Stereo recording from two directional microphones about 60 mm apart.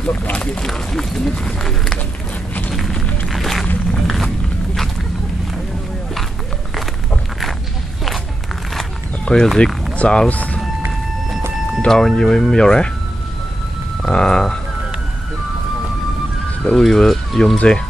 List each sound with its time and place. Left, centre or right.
0.1 s speech: left
0.5 s speech: centre
2.7 s a sound: centre
3.3 s music: centre
3.9 s a sound: centre
9.2 s speech: centre
9.9 s speech: centre
11.9 s speech: centre
14.0 s speech: centre
16.6 s speech: centre
17.6 s speech: centre